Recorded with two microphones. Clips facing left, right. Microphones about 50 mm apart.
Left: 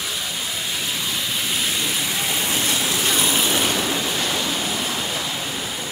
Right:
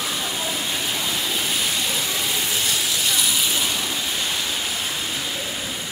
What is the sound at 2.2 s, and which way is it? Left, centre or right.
Vehicle, left.